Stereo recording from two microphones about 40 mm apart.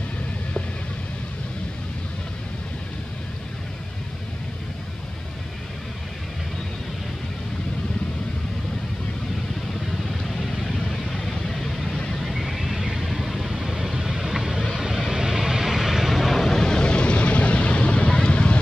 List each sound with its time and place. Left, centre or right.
10.3 s vehicle: centre
16.4 s vehicle: centre